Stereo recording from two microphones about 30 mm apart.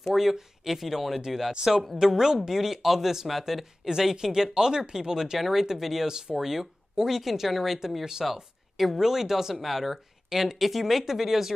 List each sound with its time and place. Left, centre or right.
0.1 s speech: centre
3.8 s speech: centre
6.0 s speech: centre